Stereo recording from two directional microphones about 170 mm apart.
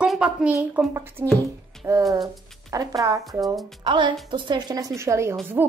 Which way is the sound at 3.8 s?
30° right (ahead or behind).